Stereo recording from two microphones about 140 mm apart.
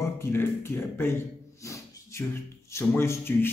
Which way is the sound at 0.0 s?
15° left (ahead or behind).